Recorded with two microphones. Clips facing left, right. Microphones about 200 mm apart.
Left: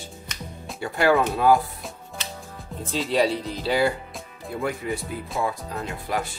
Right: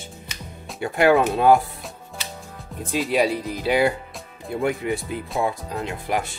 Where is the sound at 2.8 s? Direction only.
15° right (ahead or behind).